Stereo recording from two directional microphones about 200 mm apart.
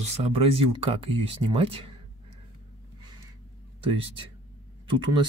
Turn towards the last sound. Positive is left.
turn(degrees=-25)  # may be behind; listen again after turning